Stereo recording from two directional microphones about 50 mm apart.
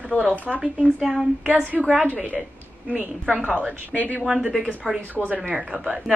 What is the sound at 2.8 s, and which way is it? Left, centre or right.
Speech, right.